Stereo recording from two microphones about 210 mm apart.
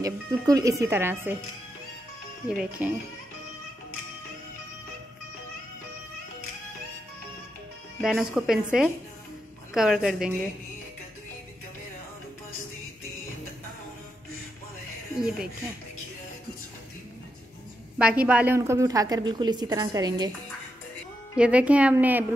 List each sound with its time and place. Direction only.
0.0 s a woman's voice: 15° right (ahead or behind)
2.4 s a woman's voice: 5° right (ahead or behind)
8.0 s a woman's voice: 5° right (ahead or behind)
9.8 s a woman's voice: 5° right (ahead or behind)
15.1 s a woman's voice: centre (ahead or behind)
17.9 s a woman's voice: 5° right (ahead or behind)
21.4 s a woman's voice: 5° right (ahead or behind)